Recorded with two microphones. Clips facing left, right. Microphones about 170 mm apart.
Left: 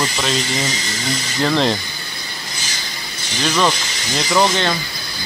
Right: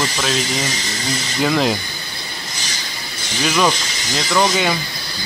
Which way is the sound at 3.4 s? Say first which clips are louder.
Even; 5° right (ahead or behind).